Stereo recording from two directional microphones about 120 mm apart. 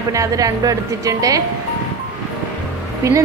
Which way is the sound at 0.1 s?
30° right (ahead or behind).